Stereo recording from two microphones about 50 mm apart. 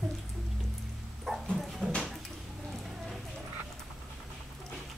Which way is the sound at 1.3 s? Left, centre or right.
Centre.